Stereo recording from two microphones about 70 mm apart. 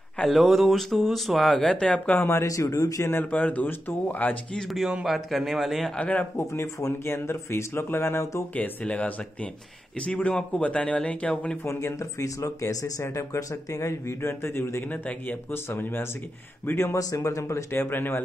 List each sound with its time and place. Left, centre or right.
0.2 s speech: centre
2.4 s speech: left
3.3 s speech: left
4.6 s speech: centre
5.9 s speech: centre
6.3 s speech: left
8.5 s speech: left
11.6 s speech: left
14.9 s speech: left
17.1 s speech: left
17.7 s speech: left